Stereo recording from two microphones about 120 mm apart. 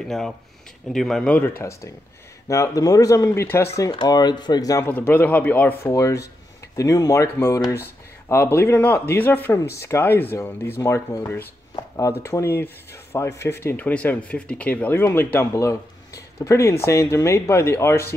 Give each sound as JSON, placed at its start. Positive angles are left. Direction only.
{"t": 0.9, "sound": "speech", "side_deg": 5}
{"t": 1.6, "sound": "speech", "side_deg": 25}
{"t": 3.9, "sound": "speech", "side_deg": 40}
{"t": 4.8, "sound": "speech", "side_deg": 15}
{"t": 5.9, "sound": "speech", "side_deg": 25}